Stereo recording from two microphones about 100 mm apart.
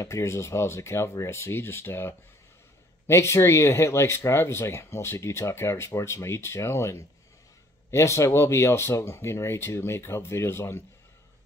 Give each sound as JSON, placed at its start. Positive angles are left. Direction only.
{"t": 0.0, "sound": "speech", "side_deg": 30}